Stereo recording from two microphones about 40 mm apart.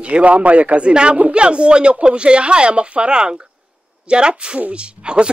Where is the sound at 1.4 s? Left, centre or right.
Right.